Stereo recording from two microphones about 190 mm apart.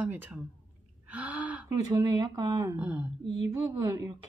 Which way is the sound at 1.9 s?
20° right (ahead or behind).